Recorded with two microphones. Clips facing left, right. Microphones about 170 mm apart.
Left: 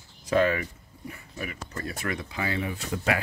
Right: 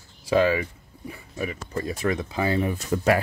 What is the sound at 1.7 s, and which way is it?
Speech, 25° right (ahead or behind).